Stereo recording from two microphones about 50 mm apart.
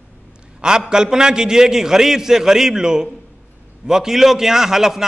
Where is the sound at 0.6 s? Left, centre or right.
Centre.